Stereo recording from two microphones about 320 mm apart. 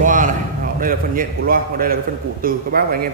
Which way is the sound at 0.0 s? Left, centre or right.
Right.